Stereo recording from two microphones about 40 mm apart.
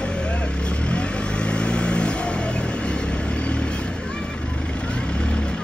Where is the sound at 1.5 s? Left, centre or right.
Left.